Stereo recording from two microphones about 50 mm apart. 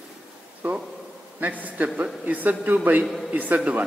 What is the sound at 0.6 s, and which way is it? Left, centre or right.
A man's voice, right.